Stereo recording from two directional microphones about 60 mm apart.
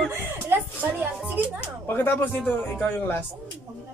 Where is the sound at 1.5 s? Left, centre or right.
Left.